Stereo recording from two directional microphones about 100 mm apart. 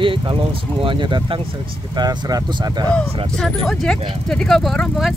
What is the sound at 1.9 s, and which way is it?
Speech, 45° right (ahead or behind).